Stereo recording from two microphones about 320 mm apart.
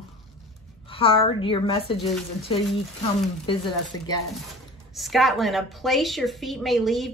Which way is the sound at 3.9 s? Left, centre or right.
Left.